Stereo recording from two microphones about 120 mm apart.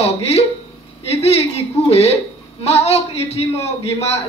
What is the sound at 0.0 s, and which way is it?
A man's voice, 60° left (ahead or behind).